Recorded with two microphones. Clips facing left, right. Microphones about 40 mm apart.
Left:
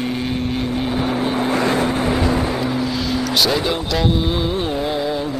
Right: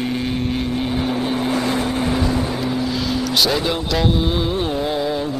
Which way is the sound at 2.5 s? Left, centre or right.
Centre.